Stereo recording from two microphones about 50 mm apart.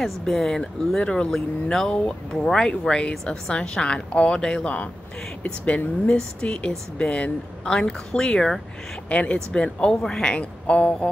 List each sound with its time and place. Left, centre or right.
0.0 s speech: centre
5.4 s speech: left
6.0 s speech: centre